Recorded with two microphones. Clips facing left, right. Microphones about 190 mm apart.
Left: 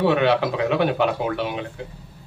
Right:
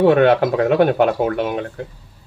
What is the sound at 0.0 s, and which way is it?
Speech, 50° right (ahead or behind).